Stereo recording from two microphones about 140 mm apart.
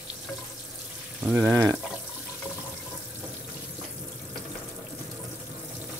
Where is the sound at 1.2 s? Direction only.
10° right (ahead or behind).